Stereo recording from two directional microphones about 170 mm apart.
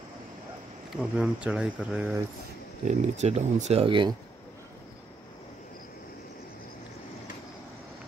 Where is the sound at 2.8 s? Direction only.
40° right (ahead or behind).